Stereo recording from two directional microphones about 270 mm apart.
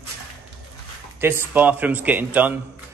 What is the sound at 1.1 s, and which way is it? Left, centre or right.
Speech, centre.